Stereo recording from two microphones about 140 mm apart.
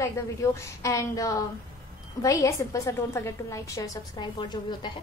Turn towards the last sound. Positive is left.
turn(degrees=30)  # may be behind; listen again after turning